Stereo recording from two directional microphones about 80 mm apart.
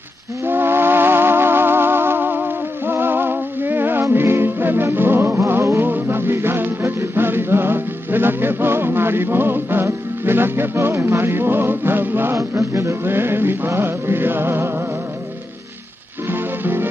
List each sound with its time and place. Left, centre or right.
0.5 s music: right
16.3 s music: right